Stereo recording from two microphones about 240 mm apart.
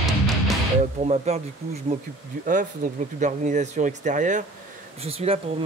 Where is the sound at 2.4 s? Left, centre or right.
Right.